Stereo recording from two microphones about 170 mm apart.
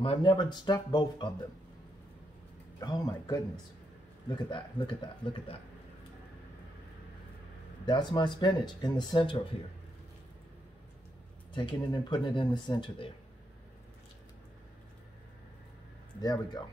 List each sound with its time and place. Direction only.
0.0 s speech: 30° left (ahead or behind)
2.8 s speech: 25° left (ahead or behind)
7.8 s speech: 25° left (ahead or behind)
11.5 s speech: 30° left (ahead or behind)
16.2 s speech: 25° left (ahead or behind)